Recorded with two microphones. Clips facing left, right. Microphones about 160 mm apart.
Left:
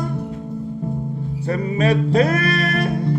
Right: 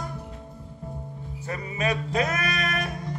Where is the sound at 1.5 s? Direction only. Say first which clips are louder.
Left 9 dB; 35° left (ahead or behind).